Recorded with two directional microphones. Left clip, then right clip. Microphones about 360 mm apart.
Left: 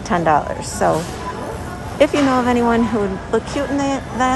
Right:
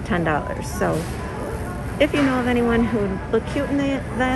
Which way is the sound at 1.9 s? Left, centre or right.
Centre.